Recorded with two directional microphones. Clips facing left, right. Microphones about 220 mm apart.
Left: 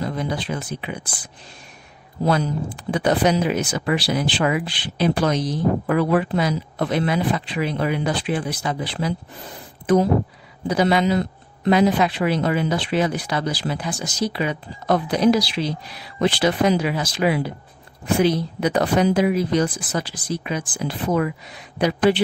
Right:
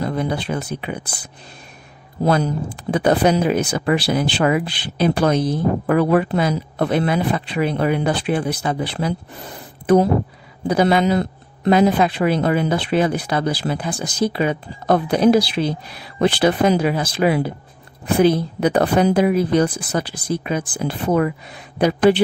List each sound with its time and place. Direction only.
0.0 s a sound: 55° right (ahead or behind)
0.7 s speech: 45° right (ahead or behind)
2.2 s speech: 50° right (ahead or behind)
10.7 s speech: 50° right (ahead or behind)